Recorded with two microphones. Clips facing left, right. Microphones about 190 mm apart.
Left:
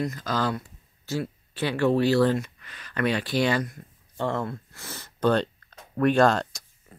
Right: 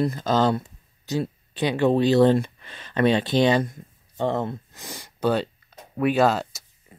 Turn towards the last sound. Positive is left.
turn(degrees=-5)  # may be behind; listen again after turning